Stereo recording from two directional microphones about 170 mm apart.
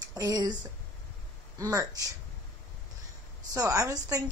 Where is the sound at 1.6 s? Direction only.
20° right (ahead or behind).